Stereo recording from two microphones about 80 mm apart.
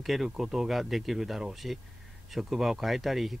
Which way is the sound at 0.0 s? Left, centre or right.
Centre.